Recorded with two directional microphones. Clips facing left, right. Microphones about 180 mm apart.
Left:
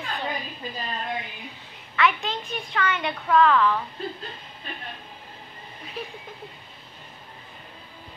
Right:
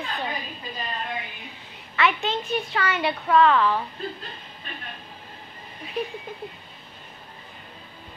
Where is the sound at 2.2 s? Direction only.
25° right (ahead or behind).